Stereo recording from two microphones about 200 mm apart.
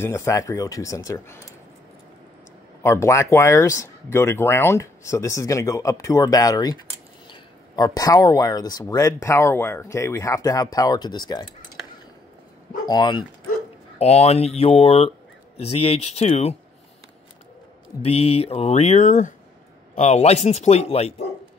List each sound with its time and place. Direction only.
0.0 s speech: 15° left (ahead or behind)
2.8 s speech: 15° left (ahead or behind)
12.8 s speech: 20° left (ahead or behind)
13.9 s speech: 30° left (ahead or behind)
18.0 s speech: 30° left (ahead or behind)